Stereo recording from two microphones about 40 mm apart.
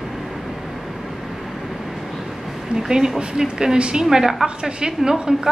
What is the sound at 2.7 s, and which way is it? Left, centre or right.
A woman's voice, centre.